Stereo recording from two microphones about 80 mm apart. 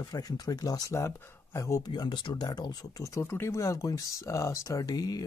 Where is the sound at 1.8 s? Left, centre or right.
Left.